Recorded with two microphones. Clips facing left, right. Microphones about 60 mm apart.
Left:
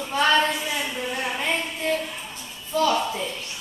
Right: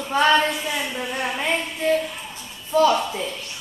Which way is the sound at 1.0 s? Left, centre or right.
Centre.